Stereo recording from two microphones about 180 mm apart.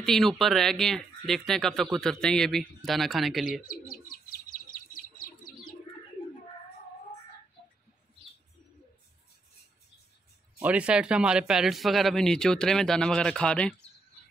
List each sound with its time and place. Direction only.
0.0 s speech: centre (ahead or behind)
3.8 s bird: 50° left (ahead or behind)
10.6 s speech: 5° right (ahead or behind)